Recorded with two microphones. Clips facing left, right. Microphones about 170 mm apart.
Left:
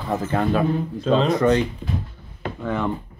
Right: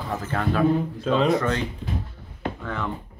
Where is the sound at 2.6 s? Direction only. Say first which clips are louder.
Left 9 dB; 20° left (ahead or behind).